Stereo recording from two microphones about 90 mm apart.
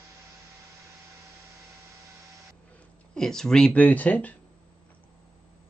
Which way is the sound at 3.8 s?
15° left (ahead or behind).